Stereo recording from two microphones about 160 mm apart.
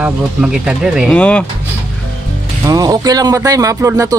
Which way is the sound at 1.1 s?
5° left (ahead or behind).